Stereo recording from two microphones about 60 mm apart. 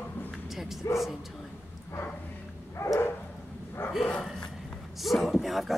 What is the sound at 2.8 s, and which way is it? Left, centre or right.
Dog, left.